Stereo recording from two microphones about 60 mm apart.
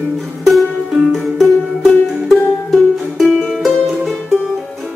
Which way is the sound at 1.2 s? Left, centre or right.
Centre.